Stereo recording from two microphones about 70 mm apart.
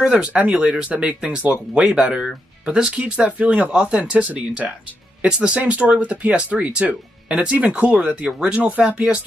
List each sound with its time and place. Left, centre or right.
0.0 s speech: centre